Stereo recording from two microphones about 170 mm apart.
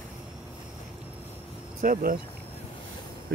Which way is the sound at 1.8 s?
55° right (ahead or behind).